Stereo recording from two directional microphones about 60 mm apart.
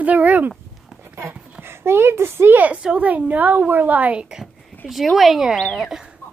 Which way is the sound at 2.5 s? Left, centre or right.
Right.